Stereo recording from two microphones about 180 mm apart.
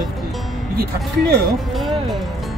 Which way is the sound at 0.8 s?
60° right (ahead or behind).